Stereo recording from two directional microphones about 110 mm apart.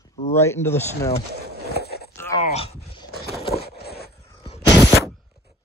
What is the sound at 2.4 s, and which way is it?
Speech, 70° left (ahead or behind).